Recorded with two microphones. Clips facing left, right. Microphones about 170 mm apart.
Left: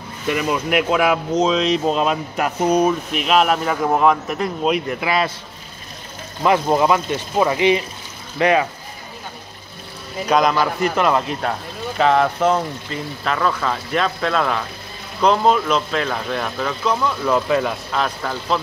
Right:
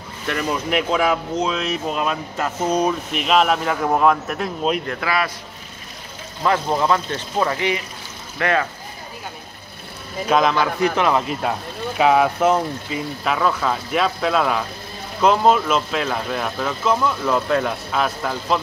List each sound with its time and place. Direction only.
0.3 s speech: 10° left (ahead or behind)
3.1 s speech: centre (ahead or behind)
5.0 s a man's voice: 25° left (ahead or behind)
6.4 s speech: 15° left (ahead or behind)
10.2 s speech: centre (ahead or behind)